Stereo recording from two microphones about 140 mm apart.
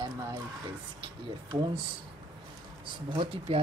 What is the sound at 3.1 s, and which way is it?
Speech, 40° right (ahead or behind).